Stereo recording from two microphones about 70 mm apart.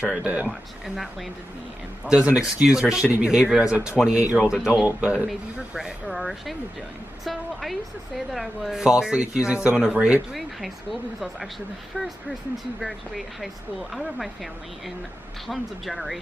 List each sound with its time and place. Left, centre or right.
0.0 s speech: centre
0.5 s speech: centre
2.0 s speech: centre
4.5 s speech: centre
5.3 s speech: centre
8.3 s speech: centre
8.8 s speech: centre
10.3 s speech: centre
12.8 s speech: centre